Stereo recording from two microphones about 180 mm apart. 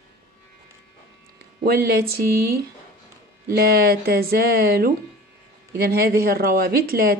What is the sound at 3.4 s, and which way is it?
A woman's voice, 60° right (ahead or behind).